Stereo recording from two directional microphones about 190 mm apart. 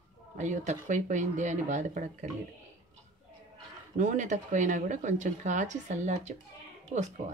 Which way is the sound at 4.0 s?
40° right (ahead or behind).